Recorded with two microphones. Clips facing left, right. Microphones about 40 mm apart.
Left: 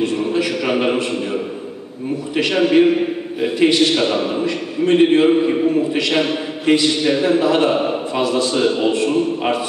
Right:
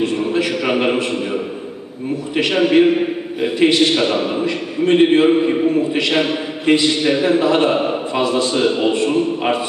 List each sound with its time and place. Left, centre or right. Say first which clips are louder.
0.0 s a man's voice: right 1 dB; centre